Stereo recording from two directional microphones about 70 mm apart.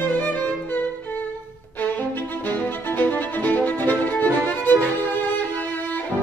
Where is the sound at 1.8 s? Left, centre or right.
Left.